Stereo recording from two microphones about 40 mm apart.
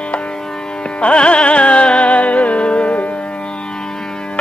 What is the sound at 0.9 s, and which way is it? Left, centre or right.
Music, left.